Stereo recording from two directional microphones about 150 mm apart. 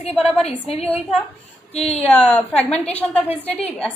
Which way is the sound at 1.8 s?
45° left (ahead or behind).